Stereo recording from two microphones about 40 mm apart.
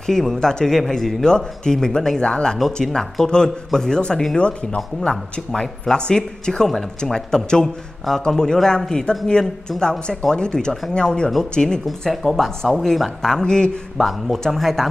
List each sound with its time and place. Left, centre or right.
0.4 s speech: centre
2.6 s speech: centre
7.6 s speech: centre
12.1 s speech: centre
13.9 s speech: centre